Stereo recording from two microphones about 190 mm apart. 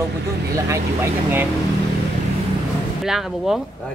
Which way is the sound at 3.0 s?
Centre (ahead or behind).